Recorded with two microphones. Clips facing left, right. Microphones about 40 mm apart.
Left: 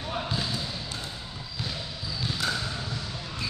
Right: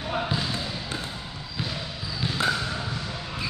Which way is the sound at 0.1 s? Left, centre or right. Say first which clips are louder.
Right 3 dB; right.